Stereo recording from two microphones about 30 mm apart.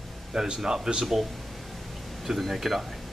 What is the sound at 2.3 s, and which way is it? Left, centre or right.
Speech, centre.